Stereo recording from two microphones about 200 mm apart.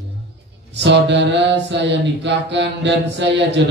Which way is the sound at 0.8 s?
60° right (ahead or behind).